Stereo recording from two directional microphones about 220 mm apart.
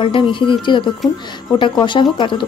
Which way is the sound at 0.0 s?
25° left (ahead or behind).